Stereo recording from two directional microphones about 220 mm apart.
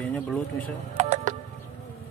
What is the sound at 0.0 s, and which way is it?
Speech, 5° left (ahead or behind).